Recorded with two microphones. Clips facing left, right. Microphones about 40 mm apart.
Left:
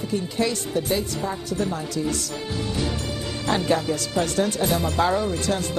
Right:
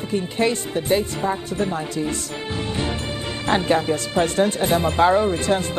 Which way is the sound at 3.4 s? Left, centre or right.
Right.